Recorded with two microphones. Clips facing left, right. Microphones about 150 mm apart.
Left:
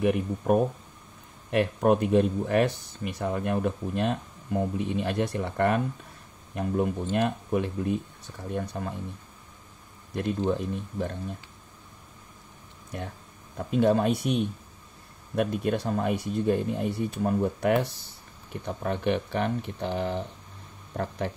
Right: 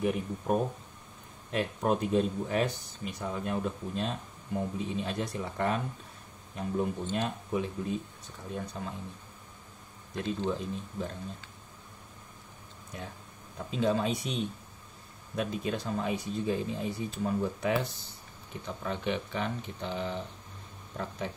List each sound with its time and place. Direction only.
0.0 s speech: 65° left (ahead or behind)
10.1 s speech: 60° left (ahead or behind)
13.6 s speech: 55° left (ahead or behind)